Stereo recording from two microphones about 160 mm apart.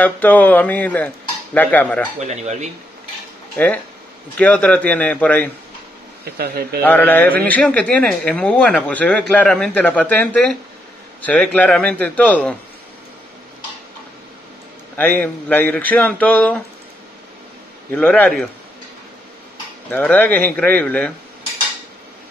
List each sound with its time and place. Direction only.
0.0 s a man's voice: 10° left (ahead or behind)
2.1 s speech: 45° right (ahead or behind)
3.5 s a man's voice: 10° left (ahead or behind)
6.2 s speech: 75° right (ahead or behind)
6.8 s a man's voice: 10° left (ahead or behind)
15.0 s a man's voice: 10° left (ahead or behind)
17.9 s a man's voice: 10° left (ahead or behind)
19.9 s a man's voice: 10° left (ahead or behind)